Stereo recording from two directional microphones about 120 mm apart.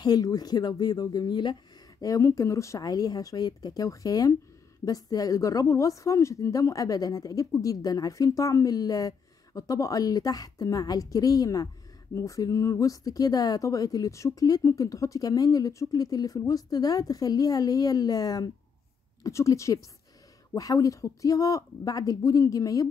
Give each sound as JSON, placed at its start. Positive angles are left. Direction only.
{"t": 0.0, "sound": "a woman's voice", "side_deg": 35}